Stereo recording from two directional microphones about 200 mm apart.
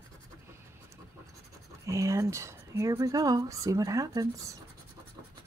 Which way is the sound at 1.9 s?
15° right (ahead or behind).